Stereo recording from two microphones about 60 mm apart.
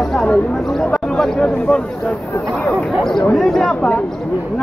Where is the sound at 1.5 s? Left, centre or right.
Centre.